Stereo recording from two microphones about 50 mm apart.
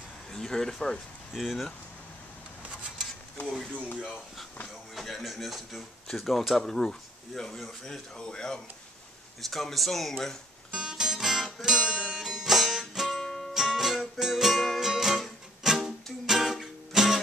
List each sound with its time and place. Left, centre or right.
0.3 s speech: centre
1.3 s speech: centre
4.9 s speech: centre
10.7 s music: centre
11.7 s music: centre
12.2 s music: centre
13.2 s music: centre
13.5 s music: centre